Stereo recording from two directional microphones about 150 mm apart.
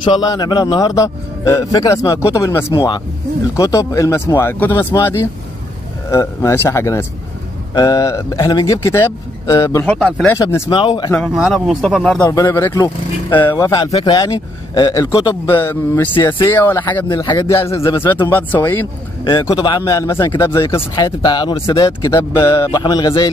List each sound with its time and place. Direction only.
0.0 s a man's voice: 30° left (ahead or behind)
9.8 s speech: 5° left (ahead or behind)
10.3 s a man's voice: 20° left (ahead or behind)
10.7 s speech: 35° left (ahead or behind)
11.1 s speech: centre (ahead or behind)
12.3 s a man's voice: 20° left (ahead or behind)
13.6 s a man's voice: 25° left (ahead or behind)
13.9 s a man's voice: 35° left (ahead or behind); by 17.0 s 15° left (ahead or behind)
17.1 s a man's voice: 30° left (ahead or behind)
17.6 s speech: 20° left (ahead or behind)
19.5 s a man's voice: 30° left (ahead or behind)
19.8 s a man's voice: 20° left (ahead or behind)
20.9 s a man's voice: 30° left (ahead or behind)